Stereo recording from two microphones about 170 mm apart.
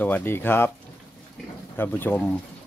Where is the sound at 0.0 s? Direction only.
10° left (ahead or behind).